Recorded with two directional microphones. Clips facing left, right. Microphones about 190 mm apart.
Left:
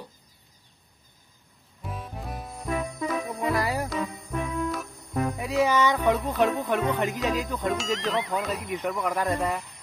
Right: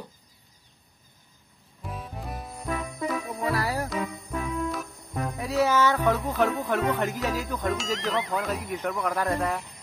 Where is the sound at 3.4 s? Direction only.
15° left (ahead or behind).